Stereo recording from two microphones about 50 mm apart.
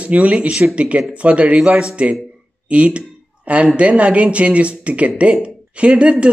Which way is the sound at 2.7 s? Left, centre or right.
Right.